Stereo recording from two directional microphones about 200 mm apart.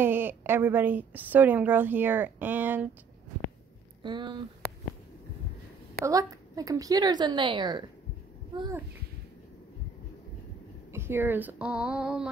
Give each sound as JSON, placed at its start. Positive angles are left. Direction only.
{"t": 0.0, "sound": "a woman's voice", "side_deg": -10}
{"t": 4.0, "sound": "speech", "side_deg": -25}
{"t": 6.0, "sound": "a woman's voice", "side_deg": -15}
{"t": 10.9, "sound": "speech", "side_deg": -10}